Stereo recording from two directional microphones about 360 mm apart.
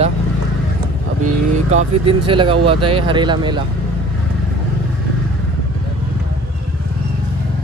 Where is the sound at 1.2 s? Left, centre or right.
Centre.